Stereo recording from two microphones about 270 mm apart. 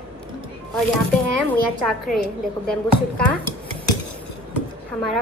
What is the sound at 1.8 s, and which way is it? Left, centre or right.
Speech, centre.